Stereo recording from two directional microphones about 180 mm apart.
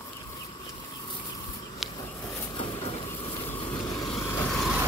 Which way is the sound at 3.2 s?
25° left (ahead or behind).